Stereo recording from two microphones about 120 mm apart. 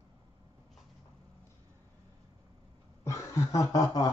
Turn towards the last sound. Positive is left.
turn(degrees=30)  # may be behind; listen again after turning